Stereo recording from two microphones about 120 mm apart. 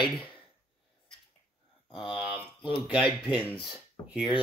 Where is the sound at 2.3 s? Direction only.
45° left (ahead or behind).